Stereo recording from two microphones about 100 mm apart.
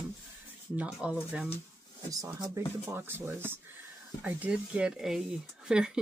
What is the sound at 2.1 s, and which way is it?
Speech, 35° right (ahead or behind).